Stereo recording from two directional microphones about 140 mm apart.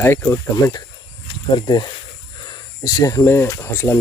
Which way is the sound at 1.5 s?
30° left (ahead or behind).